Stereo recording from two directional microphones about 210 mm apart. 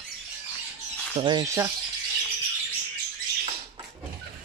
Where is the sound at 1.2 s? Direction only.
20° right (ahead or behind).